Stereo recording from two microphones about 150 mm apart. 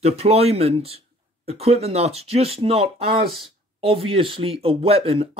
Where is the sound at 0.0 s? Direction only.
45° right (ahead or behind).